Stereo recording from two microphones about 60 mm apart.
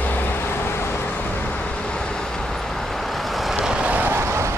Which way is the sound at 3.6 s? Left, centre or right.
Centre.